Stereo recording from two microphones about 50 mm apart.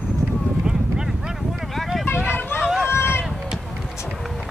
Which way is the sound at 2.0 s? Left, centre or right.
Left.